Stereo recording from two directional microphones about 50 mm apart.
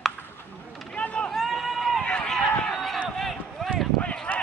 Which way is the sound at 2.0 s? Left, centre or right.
Centre.